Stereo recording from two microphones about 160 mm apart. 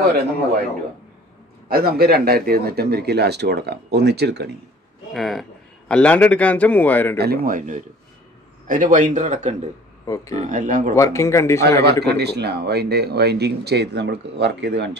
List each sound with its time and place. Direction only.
1.7 s speech: 75° right (ahead or behind); by 4.5 s 90° right
5.1 s speech: centre (ahead or behind)
7.2 s speech: 70° right (ahead or behind); by 9.6 s 45° right (ahead or behind)
10.0 s speech: 20° left (ahead or behind)
10.3 s speech: 50° right (ahead or behind)
11.0 s speech: 20° left (ahead or behind)
11.8 s speech: 90° right